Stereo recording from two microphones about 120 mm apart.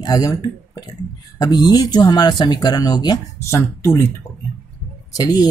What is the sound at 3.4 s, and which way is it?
Speech, 20° left (ahead or behind).